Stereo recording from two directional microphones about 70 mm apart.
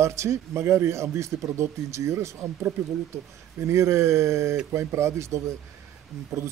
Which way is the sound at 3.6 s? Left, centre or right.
Right.